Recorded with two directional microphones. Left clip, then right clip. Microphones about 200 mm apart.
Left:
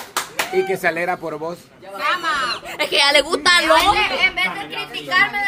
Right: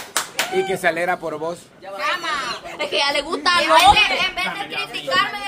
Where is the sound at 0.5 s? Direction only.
10° left (ahead or behind).